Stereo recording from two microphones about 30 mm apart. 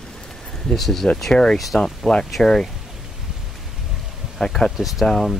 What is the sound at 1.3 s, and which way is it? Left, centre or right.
Speech, left.